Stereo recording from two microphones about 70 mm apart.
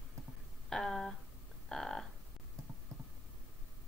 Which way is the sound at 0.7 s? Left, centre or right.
Centre.